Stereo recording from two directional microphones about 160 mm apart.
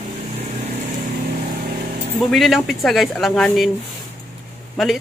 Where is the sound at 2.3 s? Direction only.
Centre (ahead or behind).